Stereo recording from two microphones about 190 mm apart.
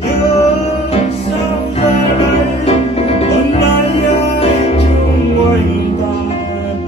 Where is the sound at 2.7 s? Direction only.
30° left (ahead or behind).